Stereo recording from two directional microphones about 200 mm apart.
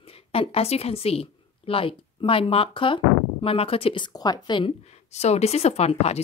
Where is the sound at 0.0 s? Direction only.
30° left (ahead or behind).